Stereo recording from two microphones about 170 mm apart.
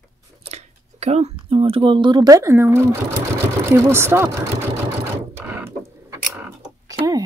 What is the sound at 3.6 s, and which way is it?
Speech, 15° right (ahead or behind).